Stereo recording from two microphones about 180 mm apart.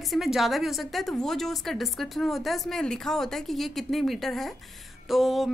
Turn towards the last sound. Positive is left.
turn(degrees=0)  # may be behind; listen again after turning